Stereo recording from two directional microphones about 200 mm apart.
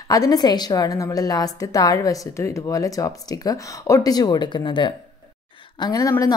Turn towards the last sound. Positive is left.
turn(degrees=15)  # may be behind; listen again after turning